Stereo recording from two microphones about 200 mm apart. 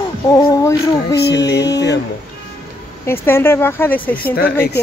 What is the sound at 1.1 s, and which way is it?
Music, 55° left (ahead or behind).